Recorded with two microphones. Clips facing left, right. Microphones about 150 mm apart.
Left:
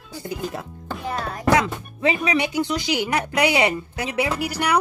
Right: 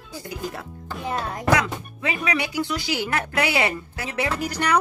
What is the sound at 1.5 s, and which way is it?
Speech, 25° left (ahead or behind).